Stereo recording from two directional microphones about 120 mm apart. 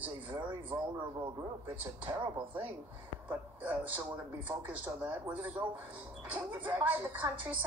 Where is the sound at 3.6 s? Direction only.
15° right (ahead or behind).